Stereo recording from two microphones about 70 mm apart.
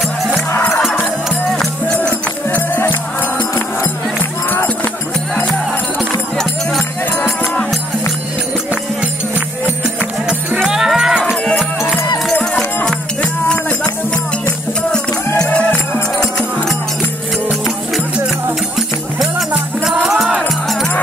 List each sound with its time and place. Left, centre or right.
2.0 s music: left
10.7 s music: centre
13.2 s music: centre
15.3 s music: centre
17.5 s music: centre
20.0 s music: centre